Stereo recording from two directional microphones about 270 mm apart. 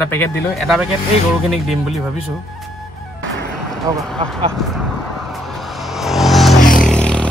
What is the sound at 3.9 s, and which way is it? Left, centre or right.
Speech, centre.